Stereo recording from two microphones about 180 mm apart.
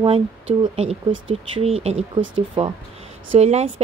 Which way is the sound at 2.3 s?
25° right (ahead or behind).